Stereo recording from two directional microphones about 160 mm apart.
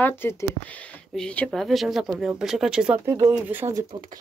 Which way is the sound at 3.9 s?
30° right (ahead or behind).